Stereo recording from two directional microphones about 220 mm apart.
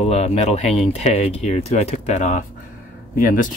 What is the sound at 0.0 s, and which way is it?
Speech, 30° left (ahead or behind).